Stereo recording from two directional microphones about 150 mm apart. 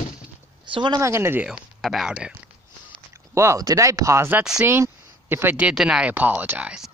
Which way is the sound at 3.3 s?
20° right (ahead or behind).